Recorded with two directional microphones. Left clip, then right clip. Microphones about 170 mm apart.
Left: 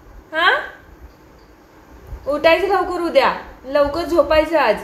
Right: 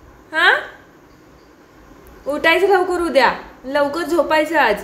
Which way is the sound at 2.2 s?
25° right (ahead or behind).